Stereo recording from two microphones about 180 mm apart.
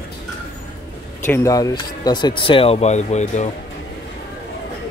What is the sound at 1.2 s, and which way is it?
Speech, 15° left (ahead or behind).